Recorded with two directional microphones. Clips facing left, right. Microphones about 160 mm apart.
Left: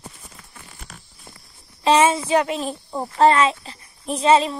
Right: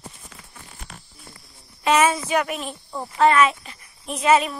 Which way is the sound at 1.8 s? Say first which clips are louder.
Left 2 dB; 30° left (ahead or behind).